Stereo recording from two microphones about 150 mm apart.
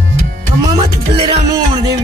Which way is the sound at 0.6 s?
30° right (ahead or behind).